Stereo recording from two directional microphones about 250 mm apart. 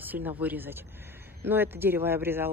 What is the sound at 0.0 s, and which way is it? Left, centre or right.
Speech, centre.